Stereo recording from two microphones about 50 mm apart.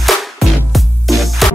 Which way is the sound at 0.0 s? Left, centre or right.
Centre.